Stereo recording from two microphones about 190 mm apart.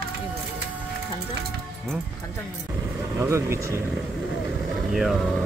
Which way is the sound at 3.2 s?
15° right (ahead or behind).